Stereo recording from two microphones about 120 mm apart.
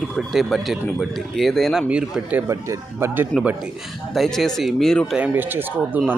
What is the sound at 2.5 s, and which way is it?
Speech, 25° right (ahead or behind).